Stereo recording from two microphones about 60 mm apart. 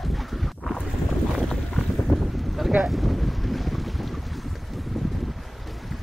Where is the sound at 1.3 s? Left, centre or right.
Centre.